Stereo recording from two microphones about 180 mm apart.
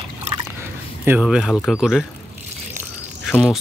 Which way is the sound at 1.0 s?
5° right (ahead or behind).